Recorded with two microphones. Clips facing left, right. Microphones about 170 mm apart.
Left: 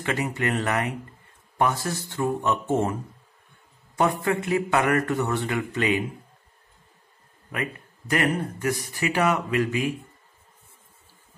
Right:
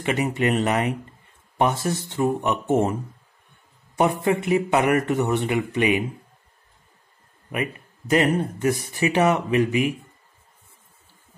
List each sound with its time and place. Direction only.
0.0 s a man's voice: 20° right (ahead or behind)
7.5 s a man's voice: 20° right (ahead or behind)